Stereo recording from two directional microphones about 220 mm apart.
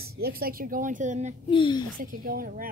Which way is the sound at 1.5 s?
20° left (ahead or behind).